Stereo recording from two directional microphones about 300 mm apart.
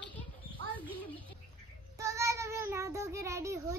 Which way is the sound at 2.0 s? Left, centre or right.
Centre.